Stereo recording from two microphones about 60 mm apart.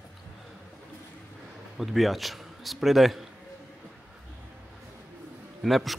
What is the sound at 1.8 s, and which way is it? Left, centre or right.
A man's voice, centre.